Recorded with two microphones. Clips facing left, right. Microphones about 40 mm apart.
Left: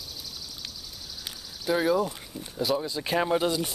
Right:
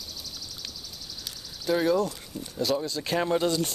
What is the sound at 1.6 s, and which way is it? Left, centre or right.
Speech, centre.